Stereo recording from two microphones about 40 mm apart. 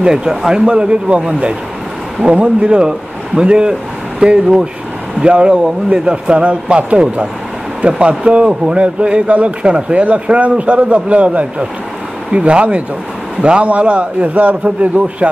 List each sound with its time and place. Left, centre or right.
0.0 s speech: centre
7.8 s a man's voice: right